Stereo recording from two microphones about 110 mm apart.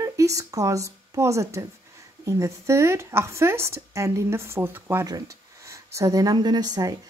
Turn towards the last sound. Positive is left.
turn(degrees=-35)  # may be behind; listen again after turning